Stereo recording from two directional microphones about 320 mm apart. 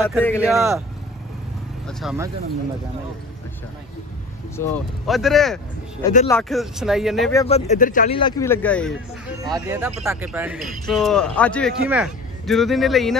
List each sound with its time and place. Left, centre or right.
0.0 s a man's voice: centre
0.6 s speech: centre
1.9 s a man's voice: centre
4.6 s a man's voice: centre
7.4 s speech: centre
9.4 s a man's voice: centre